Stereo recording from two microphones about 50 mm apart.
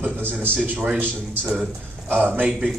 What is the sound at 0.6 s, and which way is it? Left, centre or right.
Speech, right.